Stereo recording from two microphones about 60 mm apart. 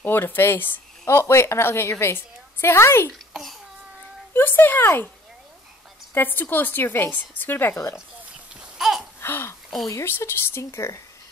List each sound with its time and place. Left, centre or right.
0.0 s a woman's voice: left
1.0 s a woman's voice: left
3.1 s a child's voice: centre
4.3 s a woman's voice: left
6.1 s a woman's voice: left
7.7 s a woman's voice: left
8.7 s babbling: centre
9.2 s a sound: left
10.0 s a woman's voice: left